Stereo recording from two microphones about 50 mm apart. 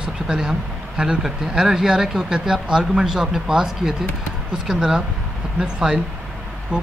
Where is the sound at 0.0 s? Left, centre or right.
Centre.